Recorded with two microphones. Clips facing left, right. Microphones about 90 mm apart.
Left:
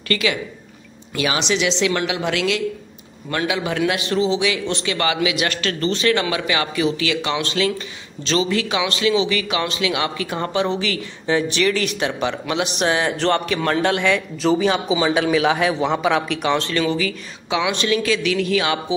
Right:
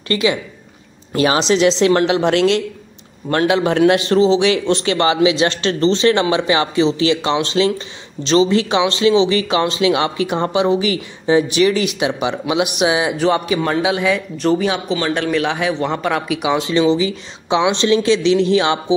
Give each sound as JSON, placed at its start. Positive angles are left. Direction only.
{"t": 0.1, "sound": "a man's voice", "side_deg": -25}
{"t": 1.1, "sound": "a woman's voice", "side_deg": -35}